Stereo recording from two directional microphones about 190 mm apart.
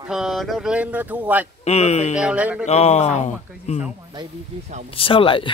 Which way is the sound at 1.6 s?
35° left (ahead or behind).